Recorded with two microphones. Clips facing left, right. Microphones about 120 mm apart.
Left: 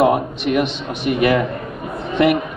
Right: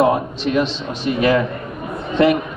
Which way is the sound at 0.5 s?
60° left (ahead or behind).